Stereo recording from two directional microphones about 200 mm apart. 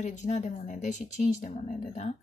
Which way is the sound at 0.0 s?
35° left (ahead or behind).